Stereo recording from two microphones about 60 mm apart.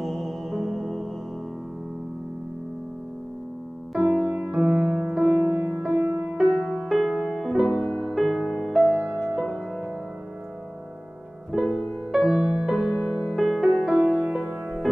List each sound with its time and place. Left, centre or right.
0.0 s music: centre
4.2 s music: centre
5.6 s music: right
11.5 s music: centre